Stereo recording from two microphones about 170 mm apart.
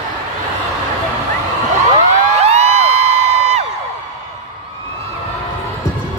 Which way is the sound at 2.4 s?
40° right (ahead or behind).